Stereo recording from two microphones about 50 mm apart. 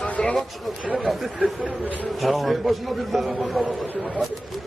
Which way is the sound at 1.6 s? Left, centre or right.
Right.